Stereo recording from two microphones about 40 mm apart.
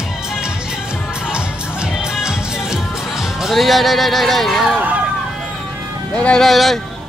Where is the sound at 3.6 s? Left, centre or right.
Centre.